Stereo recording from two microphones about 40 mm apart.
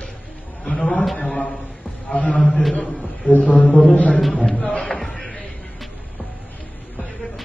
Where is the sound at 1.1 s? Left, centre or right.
Left.